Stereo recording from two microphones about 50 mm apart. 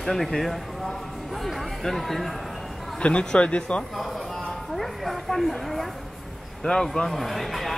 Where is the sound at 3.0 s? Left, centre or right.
Left.